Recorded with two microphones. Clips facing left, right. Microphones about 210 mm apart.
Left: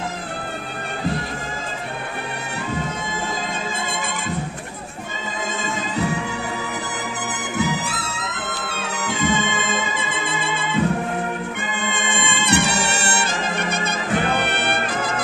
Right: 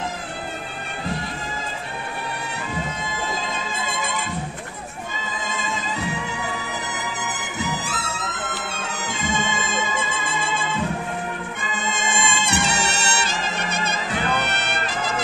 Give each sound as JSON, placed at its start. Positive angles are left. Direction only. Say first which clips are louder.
{"t": 9.0, "sound": "music", "louder": "left 5 dB", "side_deg": 60}
{"t": 11.7, "sound": "music", "louder": "right 2 dB", "side_deg": 60}